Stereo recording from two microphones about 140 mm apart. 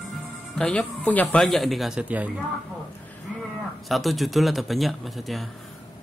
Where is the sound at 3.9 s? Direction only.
Centre (ahead or behind).